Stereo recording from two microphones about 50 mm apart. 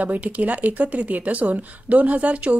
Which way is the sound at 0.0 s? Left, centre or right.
Right.